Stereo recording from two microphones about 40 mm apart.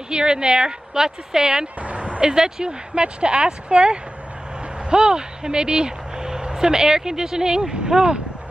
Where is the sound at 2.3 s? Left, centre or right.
Centre.